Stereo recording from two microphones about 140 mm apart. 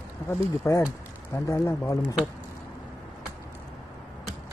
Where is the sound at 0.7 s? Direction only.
20° left (ahead or behind).